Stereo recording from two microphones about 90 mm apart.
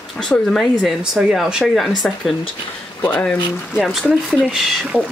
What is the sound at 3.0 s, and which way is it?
Speech, 15° left (ahead or behind).